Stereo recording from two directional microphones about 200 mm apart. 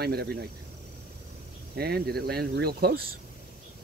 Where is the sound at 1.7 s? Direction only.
50° right (ahead or behind).